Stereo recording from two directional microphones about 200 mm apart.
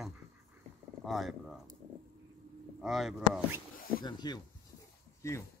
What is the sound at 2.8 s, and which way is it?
Speech, centre (ahead or behind).